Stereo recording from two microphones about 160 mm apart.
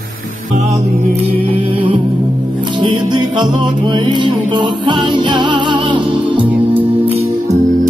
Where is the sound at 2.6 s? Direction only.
30° right (ahead or behind).